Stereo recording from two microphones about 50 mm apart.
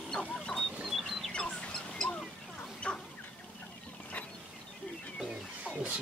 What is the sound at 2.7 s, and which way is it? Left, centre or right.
Fowl, left.